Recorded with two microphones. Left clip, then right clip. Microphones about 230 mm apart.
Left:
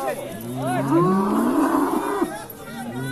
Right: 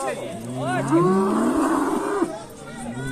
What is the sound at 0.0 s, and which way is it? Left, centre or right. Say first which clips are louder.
Livestock: left 1 dB; right.